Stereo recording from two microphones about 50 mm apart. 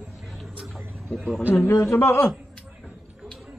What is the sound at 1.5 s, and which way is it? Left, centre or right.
Speech, left.